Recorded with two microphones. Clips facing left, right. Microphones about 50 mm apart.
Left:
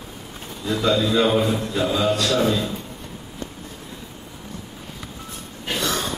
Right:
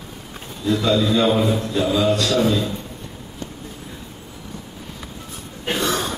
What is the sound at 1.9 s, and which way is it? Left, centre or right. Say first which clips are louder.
Speech: right 3 dB; left.